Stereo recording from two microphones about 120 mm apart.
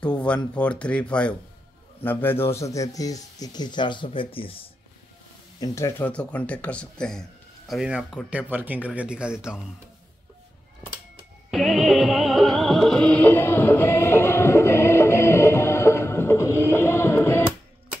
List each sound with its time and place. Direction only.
0.0 s speech: 10° left (ahead or behind); by 4.5 s 45° left (ahead or behind)
5.6 s speech: 25° left (ahead or behind)
6.0 s a man's voice: 10° left (ahead or behind); by 9.6 s 5° right (ahead or behind)
11.5 s music: centre (ahead or behind); by 17.5 s 20° left (ahead or behind)